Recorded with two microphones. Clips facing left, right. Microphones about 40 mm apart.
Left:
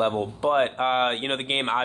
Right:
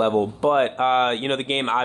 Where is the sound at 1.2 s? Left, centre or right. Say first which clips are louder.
Right 3 dB; centre.